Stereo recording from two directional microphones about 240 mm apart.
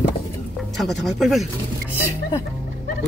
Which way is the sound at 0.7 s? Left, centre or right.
Centre.